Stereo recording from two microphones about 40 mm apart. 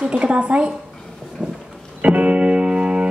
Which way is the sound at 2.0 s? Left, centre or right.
Right.